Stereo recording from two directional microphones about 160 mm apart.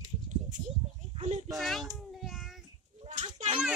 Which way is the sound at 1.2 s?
45° right (ahead or behind).